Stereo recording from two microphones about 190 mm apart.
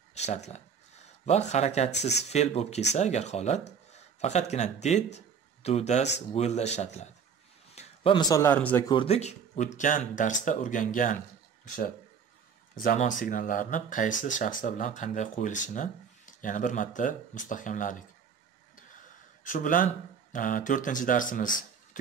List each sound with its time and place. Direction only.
0.1 s speech: 35° left (ahead or behind)
2.0 s speech: 60° left (ahead or behind)
2.2 s speech: 35° left (ahead or behind); by 8.9 s 10° left (ahead or behind)
8.9 s speech: 30° left (ahead or behind)
18.8 s a sound: 45° left (ahead or behind)
20.3 s speech: 45° left (ahead or behind)